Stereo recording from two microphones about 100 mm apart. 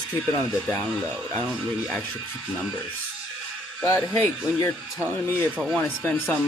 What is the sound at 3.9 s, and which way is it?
Speech, 25° left (ahead or behind).